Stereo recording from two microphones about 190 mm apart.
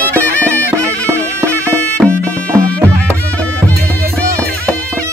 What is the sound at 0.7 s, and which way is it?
Bagpipes, 15° right (ahead or behind).